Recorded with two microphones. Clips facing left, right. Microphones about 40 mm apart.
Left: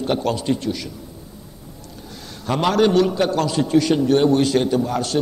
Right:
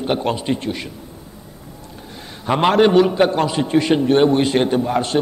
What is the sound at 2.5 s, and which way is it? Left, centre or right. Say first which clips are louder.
A man's voice: right 3 dB; right.